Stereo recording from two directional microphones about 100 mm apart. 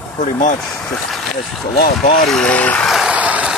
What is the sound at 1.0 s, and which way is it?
Speech, centre (ahead or behind).